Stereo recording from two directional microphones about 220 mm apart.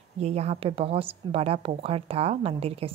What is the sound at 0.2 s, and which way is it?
A woman's voice, 30° right (ahead or behind).